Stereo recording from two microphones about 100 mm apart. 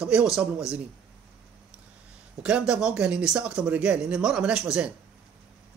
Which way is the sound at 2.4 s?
10° right (ahead or behind).